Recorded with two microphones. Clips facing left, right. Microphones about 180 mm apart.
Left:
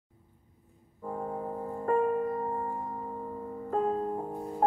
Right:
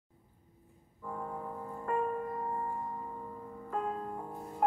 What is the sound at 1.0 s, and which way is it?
Music, 40° left (ahead or behind).